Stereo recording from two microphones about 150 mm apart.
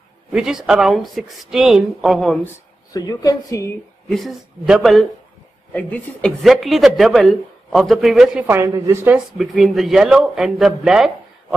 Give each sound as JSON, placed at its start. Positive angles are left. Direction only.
{"t": 0.3, "sound": "a man's voice", "side_deg": -5}
{"t": 2.4, "sound": "speech", "side_deg": 25}
{"t": 4.1, "sound": "a man's voice", "side_deg": 0}
{"t": 5.7, "sound": "a man's voice", "side_deg": 10}
{"t": 8.5, "sound": "speech", "side_deg": -15}
{"t": 9.4, "sound": "a man's voice", "side_deg": 0}